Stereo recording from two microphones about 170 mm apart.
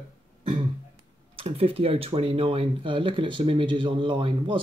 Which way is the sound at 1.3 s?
30° right (ahead or behind).